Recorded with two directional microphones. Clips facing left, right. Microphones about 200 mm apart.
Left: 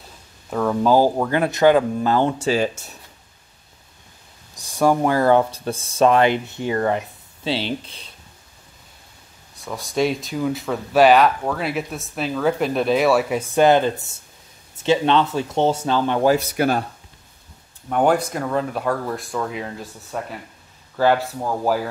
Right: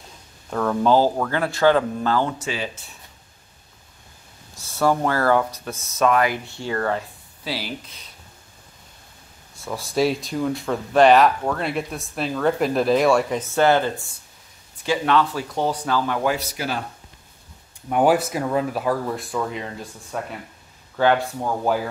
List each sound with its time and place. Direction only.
0.5 s speech: 5° left (ahead or behind); by 2.6 s 30° left (ahead or behind)
2.6 s speech: 45° left (ahead or behind)
4.6 s speech: 15° left (ahead or behind)
5.4 s speech: 30° left (ahead or behind)
9.7 s speech: centre (ahead or behind); by 16.3 s 25° left (ahead or behind)
16.3 s speech: 50° left (ahead or behind)
17.8 s speech: 5° right (ahead or behind)